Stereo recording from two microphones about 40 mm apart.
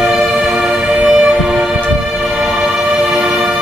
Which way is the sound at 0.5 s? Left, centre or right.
Right.